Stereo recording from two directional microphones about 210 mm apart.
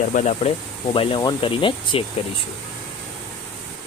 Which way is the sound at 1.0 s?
25° left (ahead or behind).